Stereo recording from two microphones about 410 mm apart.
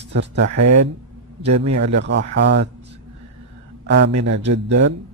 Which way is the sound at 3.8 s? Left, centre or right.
Right.